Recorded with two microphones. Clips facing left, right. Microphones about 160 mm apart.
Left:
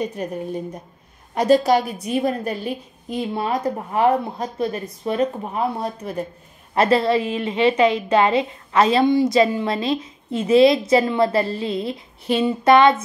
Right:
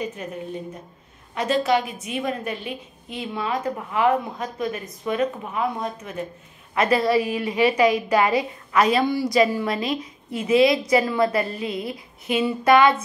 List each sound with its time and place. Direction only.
0.1 s a woman's voice: 35° left (ahead or behind)